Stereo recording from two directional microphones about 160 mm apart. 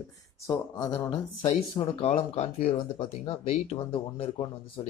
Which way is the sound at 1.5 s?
40° left (ahead or behind).